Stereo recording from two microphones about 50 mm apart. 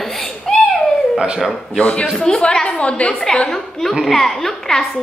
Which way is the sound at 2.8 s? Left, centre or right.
Left.